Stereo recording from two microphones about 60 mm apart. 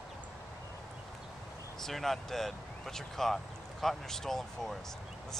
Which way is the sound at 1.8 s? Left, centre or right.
Centre.